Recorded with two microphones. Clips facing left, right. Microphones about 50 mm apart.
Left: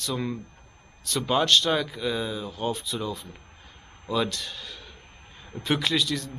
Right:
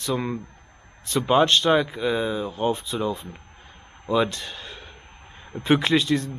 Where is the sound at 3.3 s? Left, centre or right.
Right.